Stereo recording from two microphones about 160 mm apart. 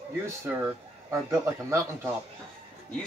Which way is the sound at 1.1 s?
20° right (ahead or behind).